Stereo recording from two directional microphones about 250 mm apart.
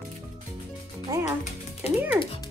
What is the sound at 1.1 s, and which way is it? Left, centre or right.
A child's voice, centre.